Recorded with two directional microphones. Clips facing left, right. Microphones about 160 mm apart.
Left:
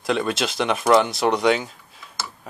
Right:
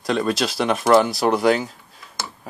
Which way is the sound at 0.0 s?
Centre (ahead or behind).